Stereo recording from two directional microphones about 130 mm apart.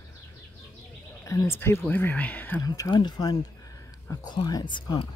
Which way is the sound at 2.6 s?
25° left (ahead or behind).